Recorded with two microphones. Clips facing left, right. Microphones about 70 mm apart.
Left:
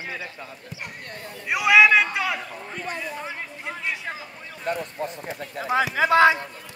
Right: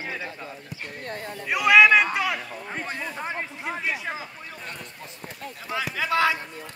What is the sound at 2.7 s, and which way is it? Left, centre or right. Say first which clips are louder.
Speech: even; right.